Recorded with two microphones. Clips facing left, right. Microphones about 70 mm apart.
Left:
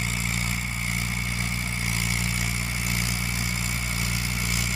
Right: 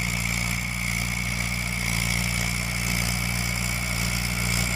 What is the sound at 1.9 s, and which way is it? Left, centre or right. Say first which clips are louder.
Vehicle: even; centre.